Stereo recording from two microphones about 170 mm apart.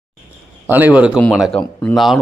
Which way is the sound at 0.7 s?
10° right (ahead or behind).